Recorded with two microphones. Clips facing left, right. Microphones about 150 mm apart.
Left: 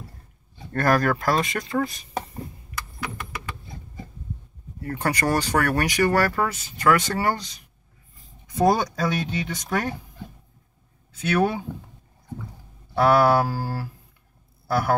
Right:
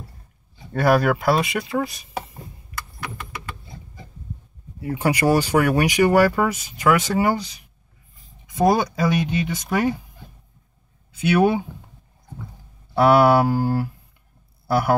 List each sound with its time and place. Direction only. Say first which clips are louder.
0.7 s speech: right 3 dB; 5° right (ahead or behind)
4.7 s speech: right 4 dB; 10° right (ahead or behind)
11.2 s speech: right 5 dB; 15° right (ahead or behind)
12.9 s a sound: right 3 dB; 20° right (ahead or behind)